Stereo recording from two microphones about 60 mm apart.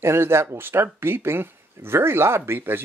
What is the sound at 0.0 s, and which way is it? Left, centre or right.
Speech, right.